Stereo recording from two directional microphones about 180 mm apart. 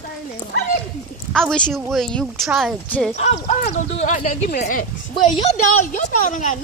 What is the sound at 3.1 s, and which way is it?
Speech, 35° left (ahead or behind).